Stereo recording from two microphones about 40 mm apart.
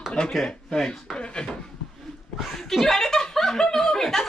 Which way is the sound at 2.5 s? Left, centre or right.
Centre.